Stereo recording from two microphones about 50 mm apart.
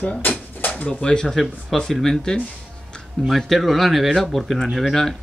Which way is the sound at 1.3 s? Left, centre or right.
Centre.